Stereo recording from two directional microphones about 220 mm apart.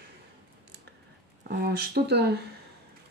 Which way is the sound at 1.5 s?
45° right (ahead or behind).